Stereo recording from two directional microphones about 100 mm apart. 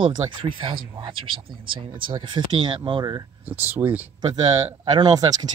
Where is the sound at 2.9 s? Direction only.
45° right (ahead or behind).